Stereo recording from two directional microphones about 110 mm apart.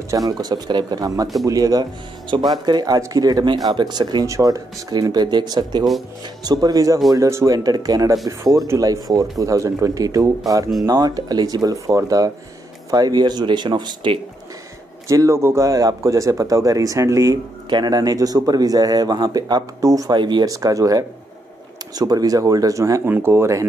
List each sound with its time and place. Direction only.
0.1 s speech: 35° right (ahead or behind)
4.3 s speech: 30° right (ahead or behind)
15.0 s speech: 30° right (ahead or behind)
17.6 s speech: 40° right (ahead or behind)
23.0 s speech: 20° right (ahead or behind)